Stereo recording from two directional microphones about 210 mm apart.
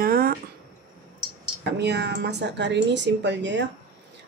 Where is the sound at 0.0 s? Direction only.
45° right (ahead or behind).